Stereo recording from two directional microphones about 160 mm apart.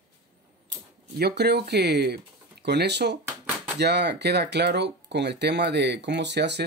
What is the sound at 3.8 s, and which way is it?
Speech, 90° right.